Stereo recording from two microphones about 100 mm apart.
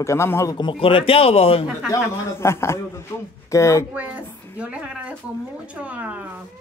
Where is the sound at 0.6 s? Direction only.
60° left (ahead or behind); by 1.7 s 75° left (ahead or behind).